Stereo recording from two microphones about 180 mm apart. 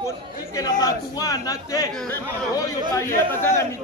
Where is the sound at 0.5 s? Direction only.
20° left (ahead or behind).